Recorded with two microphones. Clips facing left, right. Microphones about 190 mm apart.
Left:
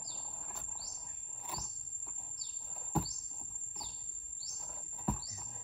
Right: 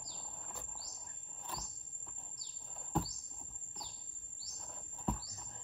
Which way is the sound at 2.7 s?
Centre (ahead or behind).